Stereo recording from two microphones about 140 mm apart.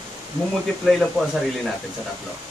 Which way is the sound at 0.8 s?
Centre (ahead or behind).